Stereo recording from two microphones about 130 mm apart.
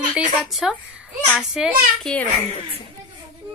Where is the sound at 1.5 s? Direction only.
5° right (ahead or behind).